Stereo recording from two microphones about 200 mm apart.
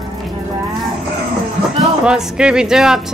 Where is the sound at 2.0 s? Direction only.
5° right (ahead or behind).